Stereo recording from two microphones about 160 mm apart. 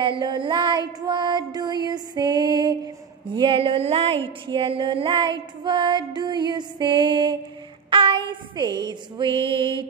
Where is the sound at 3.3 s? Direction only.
35° right (ahead or behind).